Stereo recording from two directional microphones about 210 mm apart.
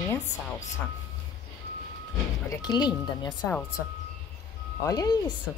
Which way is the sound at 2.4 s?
15° left (ahead or behind).